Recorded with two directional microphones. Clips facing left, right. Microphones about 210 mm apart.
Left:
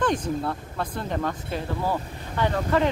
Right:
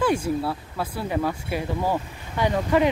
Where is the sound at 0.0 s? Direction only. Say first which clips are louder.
Right 2 dB; 10° right (ahead or behind).